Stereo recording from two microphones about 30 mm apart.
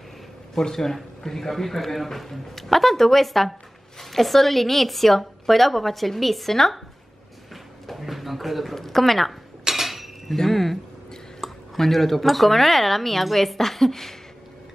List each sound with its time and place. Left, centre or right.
0.6 s a woman's voice: centre
7.9 s a sound: centre
8.7 s a woman's voice: centre
9.7 s cutlery: centre
10.3 s a woman's voice: centre